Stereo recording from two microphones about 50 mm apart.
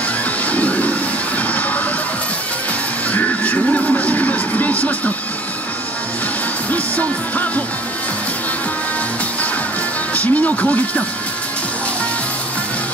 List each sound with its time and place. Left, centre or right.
0.5 s music: left
3.1 s music: left
6.7 s music: left
10.1 s speech: left